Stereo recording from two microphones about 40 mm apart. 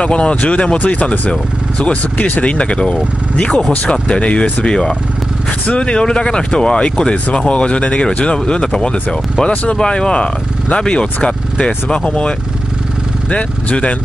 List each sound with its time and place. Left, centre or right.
0.0 s speech: left
2.5 s speech: left
4.6 s speech: centre